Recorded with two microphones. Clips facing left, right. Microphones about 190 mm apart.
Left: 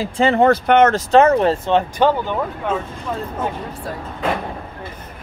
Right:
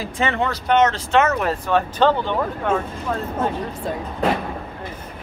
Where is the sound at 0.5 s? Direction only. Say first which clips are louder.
Left 5 dB; 55° left (ahead or behind).